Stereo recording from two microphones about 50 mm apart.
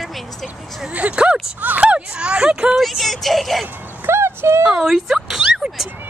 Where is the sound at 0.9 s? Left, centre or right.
Right.